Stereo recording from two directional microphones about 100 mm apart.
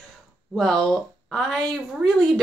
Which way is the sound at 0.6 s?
5° left (ahead or behind).